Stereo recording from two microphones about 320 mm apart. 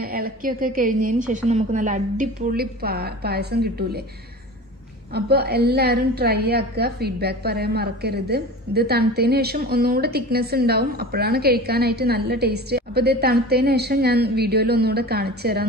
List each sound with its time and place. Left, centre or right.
0.0 s a woman's voice: right
5.1 s a woman's voice: right